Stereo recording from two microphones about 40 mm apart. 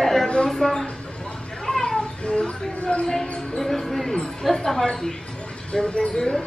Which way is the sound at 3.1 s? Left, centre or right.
Centre.